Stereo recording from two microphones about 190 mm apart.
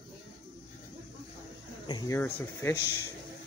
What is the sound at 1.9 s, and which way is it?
Speech, 20° left (ahead or behind).